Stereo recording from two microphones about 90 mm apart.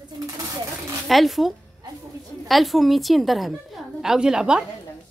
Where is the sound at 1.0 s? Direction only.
Centre (ahead or behind).